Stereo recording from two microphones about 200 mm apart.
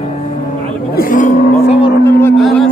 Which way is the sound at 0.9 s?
40° left (ahead or behind).